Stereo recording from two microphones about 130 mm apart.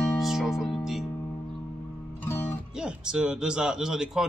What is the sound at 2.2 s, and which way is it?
Music, 15° left (ahead or behind).